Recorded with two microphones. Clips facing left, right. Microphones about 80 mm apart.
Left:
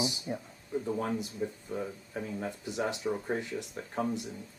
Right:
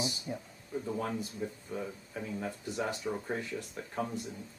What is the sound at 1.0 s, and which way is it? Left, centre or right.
Speech, centre.